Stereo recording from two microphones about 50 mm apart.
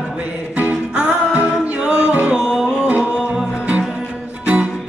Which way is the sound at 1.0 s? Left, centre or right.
Right.